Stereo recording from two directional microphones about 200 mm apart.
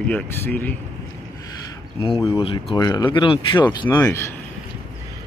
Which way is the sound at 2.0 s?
20° left (ahead or behind).